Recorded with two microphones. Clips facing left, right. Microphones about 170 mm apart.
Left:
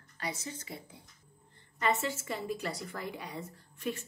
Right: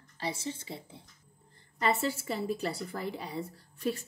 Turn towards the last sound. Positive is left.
turn(degrees=-35)  # may be behind; listen again after turning